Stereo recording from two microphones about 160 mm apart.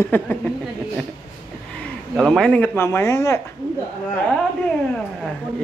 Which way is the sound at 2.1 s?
Centre (ahead or behind).